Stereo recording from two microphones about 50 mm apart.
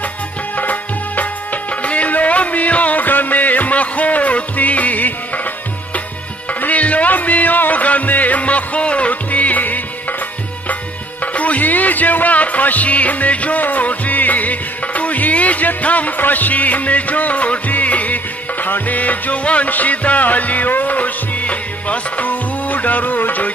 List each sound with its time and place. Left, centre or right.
0.6 s music: left
6.6 s music: left
11.3 s music: left